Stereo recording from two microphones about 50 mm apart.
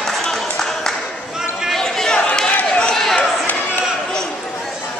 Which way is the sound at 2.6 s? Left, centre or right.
Centre.